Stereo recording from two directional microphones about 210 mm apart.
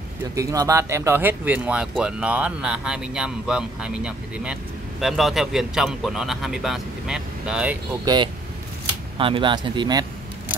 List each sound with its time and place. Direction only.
0.4 s speech: 15° right (ahead or behind)
8.0 s speech: 20° right (ahead or behind)